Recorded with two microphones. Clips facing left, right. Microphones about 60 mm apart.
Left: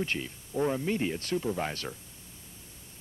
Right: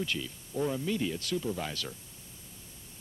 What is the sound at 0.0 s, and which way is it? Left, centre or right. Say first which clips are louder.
Speech: left 2 dB; left.